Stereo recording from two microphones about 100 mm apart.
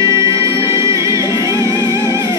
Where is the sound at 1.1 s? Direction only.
40° left (ahead or behind).